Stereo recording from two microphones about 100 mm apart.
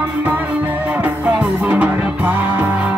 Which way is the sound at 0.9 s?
15° right (ahead or behind).